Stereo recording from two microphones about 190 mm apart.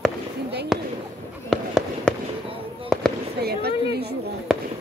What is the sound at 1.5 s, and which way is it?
Fireworks, centre (ahead or behind).